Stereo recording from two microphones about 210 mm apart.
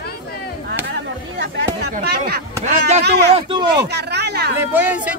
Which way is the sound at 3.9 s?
50° right (ahead or behind).